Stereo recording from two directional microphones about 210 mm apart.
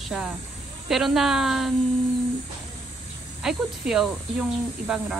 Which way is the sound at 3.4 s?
Centre (ahead or behind).